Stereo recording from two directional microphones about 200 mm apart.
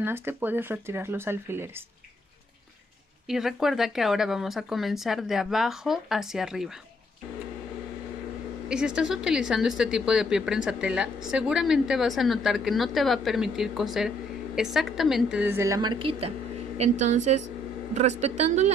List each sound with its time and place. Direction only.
0.0 s speech: 10° right (ahead or behind)
3.3 s speech: centre (ahead or behind)
8.6 s a woman's voice: 5° right (ahead or behind); by 18.7 s 35° right (ahead or behind)